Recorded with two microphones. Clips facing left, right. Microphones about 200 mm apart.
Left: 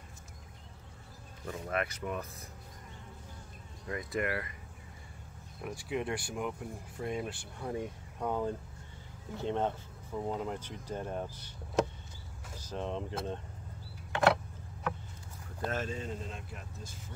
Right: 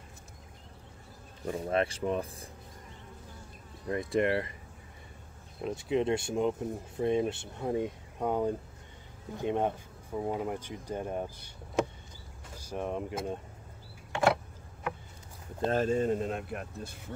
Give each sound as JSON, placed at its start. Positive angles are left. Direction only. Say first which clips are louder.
{"t": 1.4, "sound": "speech", "louder": "right 6 dB", "side_deg": -30}
{"t": 3.9, "sound": "speech", "louder": "right 6 dB", "side_deg": -25}
{"t": 5.6, "sound": "speech", "louder": "right 6 dB", "side_deg": -25}
{"t": 12.5, "sound": "speech", "louder": "right 3 dB", "side_deg": -10}
{"t": 14.1, "sound": "a sound", "louder": "right 1 dB", "side_deg": -5}
{"t": 15.6, "sound": "speech", "louder": "right 9 dB", "side_deg": -35}